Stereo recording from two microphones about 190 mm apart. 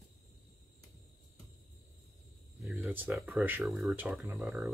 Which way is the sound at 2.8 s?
10° right (ahead or behind).